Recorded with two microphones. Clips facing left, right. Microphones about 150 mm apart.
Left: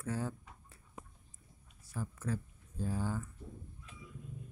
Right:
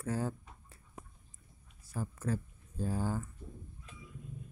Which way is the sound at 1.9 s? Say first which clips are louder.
Right 3 dB; 40° right (ahead or behind).